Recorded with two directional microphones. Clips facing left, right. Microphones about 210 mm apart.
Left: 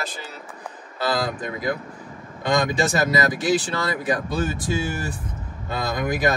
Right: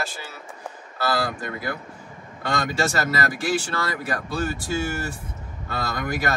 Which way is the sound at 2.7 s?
20° left (ahead or behind).